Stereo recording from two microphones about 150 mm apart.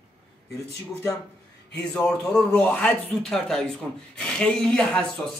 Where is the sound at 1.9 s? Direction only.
5° left (ahead or behind).